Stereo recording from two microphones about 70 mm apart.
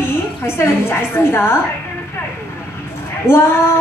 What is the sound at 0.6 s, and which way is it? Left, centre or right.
A woman's voice, left.